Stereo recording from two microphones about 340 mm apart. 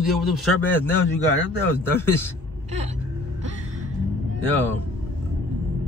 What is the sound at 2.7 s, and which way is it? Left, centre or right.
Music, centre.